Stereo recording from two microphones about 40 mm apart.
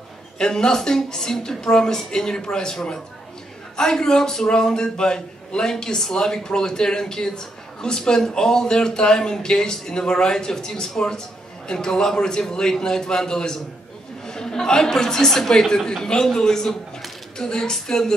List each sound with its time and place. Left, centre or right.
0.4 s a man's voice: centre